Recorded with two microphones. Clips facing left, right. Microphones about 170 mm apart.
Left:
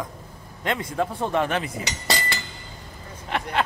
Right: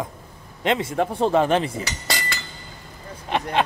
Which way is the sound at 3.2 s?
20° right (ahead or behind).